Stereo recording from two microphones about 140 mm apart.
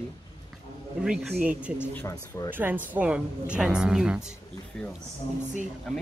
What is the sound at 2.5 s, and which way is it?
A woman's voice, 15° right (ahead or behind).